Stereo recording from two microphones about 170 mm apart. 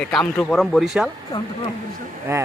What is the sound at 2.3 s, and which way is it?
Speech, 15° right (ahead or behind).